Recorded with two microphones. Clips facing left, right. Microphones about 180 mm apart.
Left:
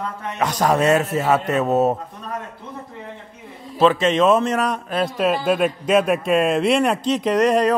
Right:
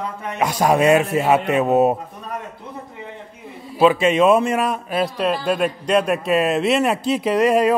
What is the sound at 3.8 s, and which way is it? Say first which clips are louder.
A man's voice: right 1 dB; 10° right (ahead or behind).